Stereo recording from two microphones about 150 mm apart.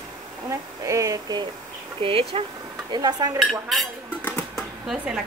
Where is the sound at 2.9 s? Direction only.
25° right (ahead or behind).